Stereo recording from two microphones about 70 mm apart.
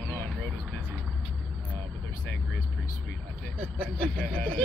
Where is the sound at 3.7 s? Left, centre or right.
Centre.